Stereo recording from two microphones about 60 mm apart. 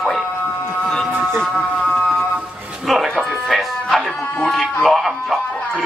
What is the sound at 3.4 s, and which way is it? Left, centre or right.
Music, centre.